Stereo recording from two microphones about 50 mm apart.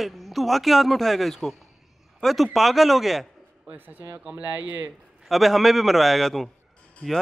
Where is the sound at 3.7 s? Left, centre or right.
Right.